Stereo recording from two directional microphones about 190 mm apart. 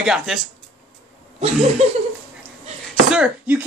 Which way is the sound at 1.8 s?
30° right (ahead or behind).